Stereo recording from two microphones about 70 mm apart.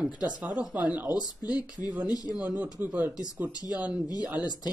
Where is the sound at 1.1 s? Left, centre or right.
Left.